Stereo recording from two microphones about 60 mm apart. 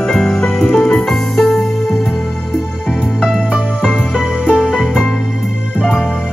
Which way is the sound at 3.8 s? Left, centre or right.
Centre.